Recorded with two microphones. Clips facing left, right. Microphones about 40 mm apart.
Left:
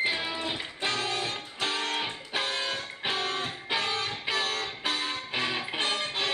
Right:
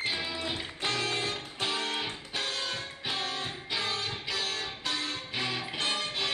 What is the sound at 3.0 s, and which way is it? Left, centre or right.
Music, left.